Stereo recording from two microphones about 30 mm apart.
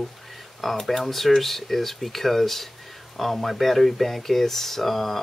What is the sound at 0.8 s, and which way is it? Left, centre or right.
Speech, centre.